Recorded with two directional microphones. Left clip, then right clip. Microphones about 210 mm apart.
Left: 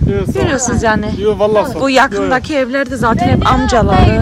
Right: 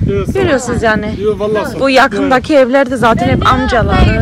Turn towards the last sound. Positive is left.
turn(degrees=15)  # may be behind; listen again after turning